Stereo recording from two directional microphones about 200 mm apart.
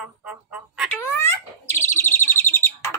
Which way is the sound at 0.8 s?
10° left (ahead or behind).